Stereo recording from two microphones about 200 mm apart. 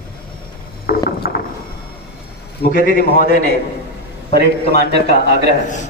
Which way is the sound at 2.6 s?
50° left (ahead or behind).